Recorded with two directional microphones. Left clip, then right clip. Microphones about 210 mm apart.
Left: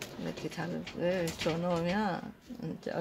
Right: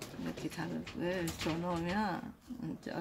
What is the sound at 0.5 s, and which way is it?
Speech, 25° left (ahead or behind).